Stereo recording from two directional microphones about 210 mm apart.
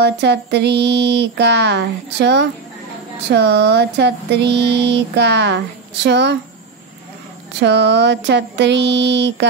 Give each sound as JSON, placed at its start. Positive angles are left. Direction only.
{"t": 0.0, "sound": "speech", "side_deg": -55}
{"t": 7.6, "sound": "speech", "side_deg": -55}